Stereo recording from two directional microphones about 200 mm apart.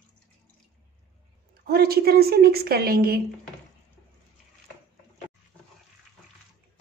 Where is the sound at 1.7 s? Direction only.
50° right (ahead or behind).